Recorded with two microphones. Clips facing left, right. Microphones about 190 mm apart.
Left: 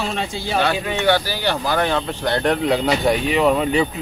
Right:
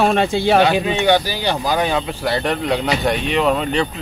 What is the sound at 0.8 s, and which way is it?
Speech, 15° right (ahead or behind).